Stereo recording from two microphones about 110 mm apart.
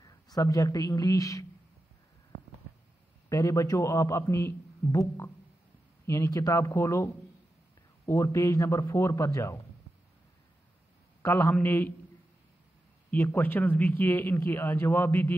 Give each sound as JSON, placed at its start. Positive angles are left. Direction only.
{"t": 0.0, "sound": "speech", "side_deg": 35}
{"t": 3.3, "sound": "a man's voice", "side_deg": 30}
{"t": 11.2, "sound": "a man's voice", "side_deg": 20}
{"t": 13.1, "sound": "a man's voice", "side_deg": 15}